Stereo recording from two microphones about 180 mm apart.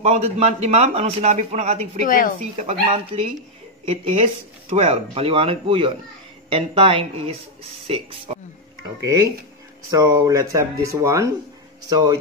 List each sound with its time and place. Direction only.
0.0 s speech: 35° right (ahead or behind)
2.0 s speech: 50° left (ahead or behind)
2.5 s speech: 35° right (ahead or behind)
9.0 s speech: 20° right (ahead or behind)